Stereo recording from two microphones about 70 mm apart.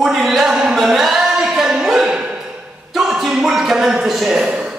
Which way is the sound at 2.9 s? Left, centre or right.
Centre.